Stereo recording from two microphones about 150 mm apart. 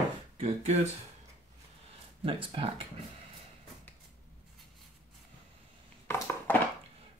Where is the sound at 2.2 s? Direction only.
35° right (ahead or behind).